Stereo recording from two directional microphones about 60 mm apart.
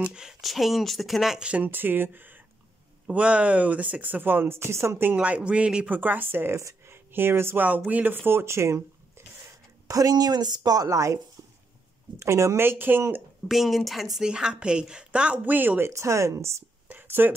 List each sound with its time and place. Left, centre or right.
0.0 s speech: centre
1.5 s speech: right
3.1 s speech: right
5.1 s speech: right
5.9 s speech: right
6.5 s a sound: right
7.1 s speech: right
7.6 s speech: right
9.8 s a woman's voice: right
12.2 s speech: right
13.5 s speech: centre
14.1 s a woman's voice: centre; by 15.8 s right
15.9 s speech: right
16.8 s a sound: right